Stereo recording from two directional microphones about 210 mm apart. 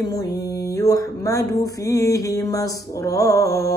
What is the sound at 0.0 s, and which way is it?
Speech, 20° left (ahead or behind).